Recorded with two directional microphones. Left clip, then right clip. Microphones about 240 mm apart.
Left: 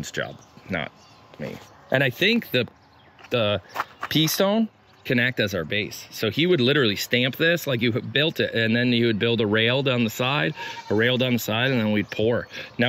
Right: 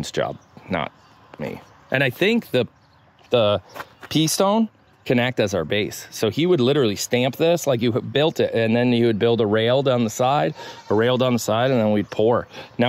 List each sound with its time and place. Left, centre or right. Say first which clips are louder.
0.0 s speech: right 6 dB; centre
5.9 s speech: right 4 dB; right
6.1 s speech: right 2 dB; centre